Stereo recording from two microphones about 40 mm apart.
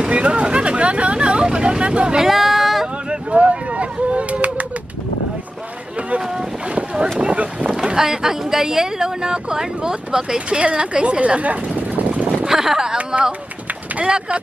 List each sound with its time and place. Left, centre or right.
0.0 s vehicle: right
2.2 s a sound: centre
3.1 s a sound: right
6.0 s boat: right
7.7 s speech: centre; by 11.5 s right
11.7 s vehicle: right
12.4 s speech: centre
13.9 s speech: right